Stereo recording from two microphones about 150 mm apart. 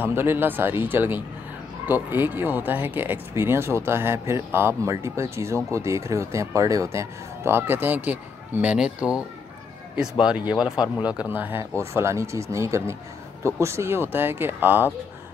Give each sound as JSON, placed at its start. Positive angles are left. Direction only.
{"t": 0.0, "sound": "speech", "side_deg": -15}
{"t": 10.2, "sound": "speech", "side_deg": -5}
{"t": 10.6, "sound": "speech", "side_deg": 30}
{"t": 11.1, "sound": "speech", "side_deg": -10}